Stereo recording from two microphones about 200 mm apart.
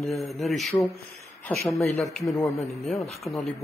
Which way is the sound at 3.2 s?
Centre (ahead or behind).